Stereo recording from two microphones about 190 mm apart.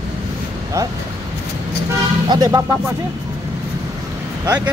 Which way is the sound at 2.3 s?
20° right (ahead or behind).